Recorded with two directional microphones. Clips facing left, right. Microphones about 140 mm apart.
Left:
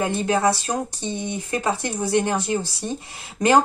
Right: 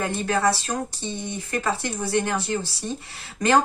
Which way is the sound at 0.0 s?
15° left (ahead or behind).